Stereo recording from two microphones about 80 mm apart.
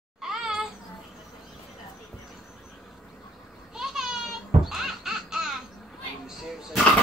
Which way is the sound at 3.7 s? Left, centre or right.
Centre.